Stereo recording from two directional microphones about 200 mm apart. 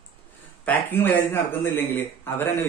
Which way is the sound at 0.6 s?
10° left (ahead or behind).